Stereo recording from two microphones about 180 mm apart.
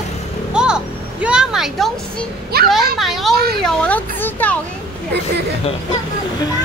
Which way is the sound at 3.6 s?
5° left (ahead or behind).